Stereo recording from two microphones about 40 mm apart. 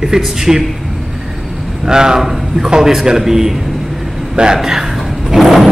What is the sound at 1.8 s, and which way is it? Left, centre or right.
A man's voice, centre.